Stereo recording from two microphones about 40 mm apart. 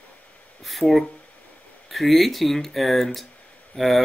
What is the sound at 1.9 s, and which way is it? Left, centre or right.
Speech, centre.